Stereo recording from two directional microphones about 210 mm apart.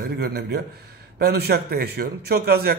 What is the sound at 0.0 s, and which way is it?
Speech, 50° right (ahead or behind).